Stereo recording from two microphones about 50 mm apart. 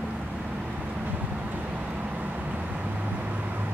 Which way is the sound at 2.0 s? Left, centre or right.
Right.